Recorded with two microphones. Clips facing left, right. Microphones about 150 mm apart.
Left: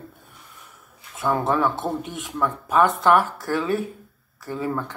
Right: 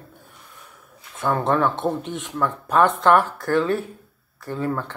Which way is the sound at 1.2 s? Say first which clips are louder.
Right 1 dB; 5° left (ahead or behind).